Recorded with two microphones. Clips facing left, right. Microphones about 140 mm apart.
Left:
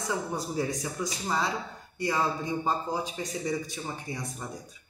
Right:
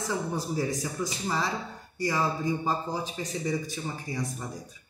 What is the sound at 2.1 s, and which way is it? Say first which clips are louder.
Speech: right 1 dB; 20° left (ahead or behind).